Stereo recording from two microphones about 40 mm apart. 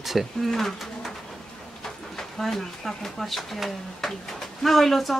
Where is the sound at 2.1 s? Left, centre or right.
Centre.